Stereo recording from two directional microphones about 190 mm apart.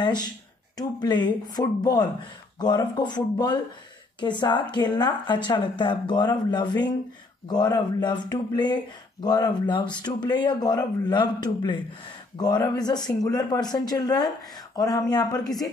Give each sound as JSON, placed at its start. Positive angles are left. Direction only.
{"t": 0.0, "sound": "a woman's voice", "side_deg": 20}